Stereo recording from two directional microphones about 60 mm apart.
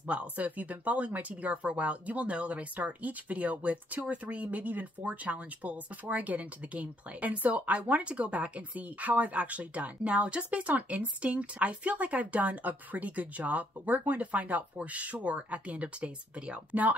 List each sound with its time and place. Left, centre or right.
0.1 s speech: right